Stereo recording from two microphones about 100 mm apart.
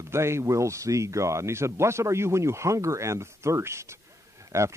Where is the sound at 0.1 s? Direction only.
25° right (ahead or behind).